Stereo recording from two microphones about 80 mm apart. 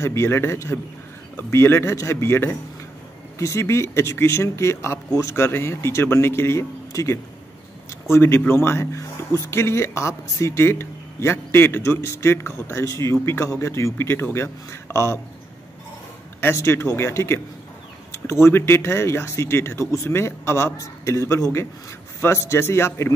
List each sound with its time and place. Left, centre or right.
0.0 s speech: left
6.9 s speech: left
8.1 s speech: left
16.3 s speech: left